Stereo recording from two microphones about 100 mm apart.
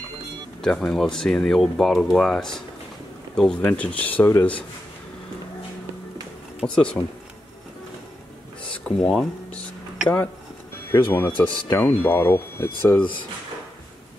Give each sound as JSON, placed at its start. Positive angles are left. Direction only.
{"t": 0.6, "sound": "speech", "side_deg": 5}
{"t": 3.6, "sound": "speech", "side_deg": 15}
{"t": 6.6, "sound": "speech", "side_deg": 10}
{"t": 8.8, "sound": "a sound", "side_deg": 10}
{"t": 10.0, "sound": "speech", "side_deg": 20}